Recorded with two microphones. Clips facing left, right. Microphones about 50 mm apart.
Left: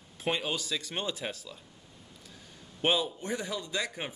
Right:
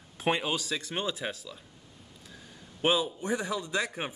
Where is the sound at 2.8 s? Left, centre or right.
Centre.